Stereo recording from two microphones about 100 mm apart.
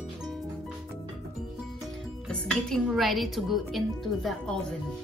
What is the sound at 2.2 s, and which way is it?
Speech, 5° left (ahead or behind).